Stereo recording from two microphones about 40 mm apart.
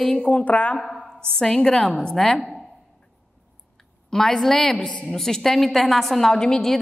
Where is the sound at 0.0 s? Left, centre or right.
Centre.